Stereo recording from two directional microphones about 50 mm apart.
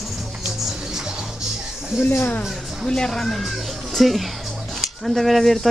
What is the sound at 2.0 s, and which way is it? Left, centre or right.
Speech, left.